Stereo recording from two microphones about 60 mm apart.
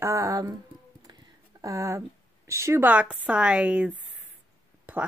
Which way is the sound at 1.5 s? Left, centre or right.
Right.